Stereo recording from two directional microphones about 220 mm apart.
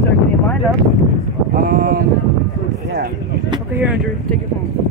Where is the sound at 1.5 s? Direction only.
40° right (ahead or behind).